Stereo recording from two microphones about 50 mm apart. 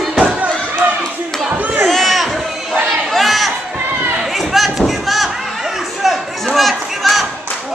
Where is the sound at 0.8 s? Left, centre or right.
Right.